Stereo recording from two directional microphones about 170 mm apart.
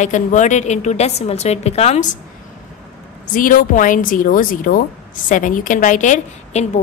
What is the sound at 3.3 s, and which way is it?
A woman's voice, 55° left (ahead or behind).